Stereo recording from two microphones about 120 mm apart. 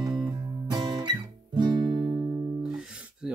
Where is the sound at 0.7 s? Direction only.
35° right (ahead or behind).